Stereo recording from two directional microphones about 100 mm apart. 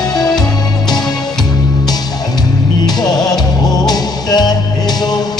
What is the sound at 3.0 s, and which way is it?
Music, 40° left (ahead or behind).